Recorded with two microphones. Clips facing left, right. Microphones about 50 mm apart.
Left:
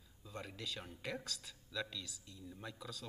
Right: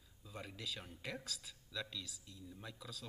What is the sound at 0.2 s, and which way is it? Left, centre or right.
Speech, centre.